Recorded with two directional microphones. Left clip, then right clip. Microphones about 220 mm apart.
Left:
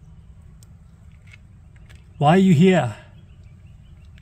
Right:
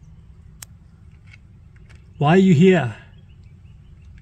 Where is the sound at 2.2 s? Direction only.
Centre (ahead or behind).